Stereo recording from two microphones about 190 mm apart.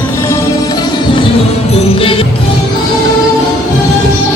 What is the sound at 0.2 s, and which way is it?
Music, 15° left (ahead or behind).